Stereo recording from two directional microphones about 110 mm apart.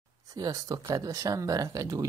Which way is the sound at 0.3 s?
35° right (ahead or behind).